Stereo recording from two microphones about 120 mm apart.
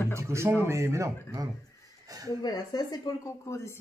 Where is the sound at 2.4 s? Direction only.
35° left (ahead or behind).